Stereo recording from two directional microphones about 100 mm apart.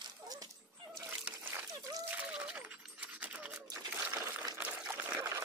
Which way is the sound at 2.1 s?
10° right (ahead or behind).